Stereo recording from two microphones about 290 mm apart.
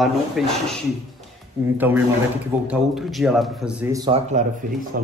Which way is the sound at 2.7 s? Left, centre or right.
Centre.